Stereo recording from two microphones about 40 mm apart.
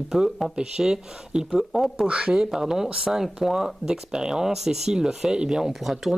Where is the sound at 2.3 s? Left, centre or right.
Centre.